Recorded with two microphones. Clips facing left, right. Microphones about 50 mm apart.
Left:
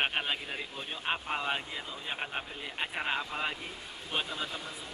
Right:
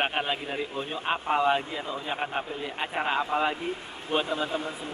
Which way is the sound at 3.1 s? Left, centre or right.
Right.